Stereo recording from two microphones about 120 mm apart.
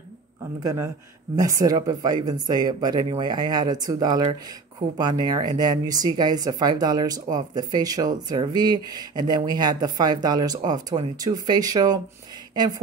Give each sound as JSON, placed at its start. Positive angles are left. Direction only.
{"t": 0.6, "sound": "speech", "side_deg": -30}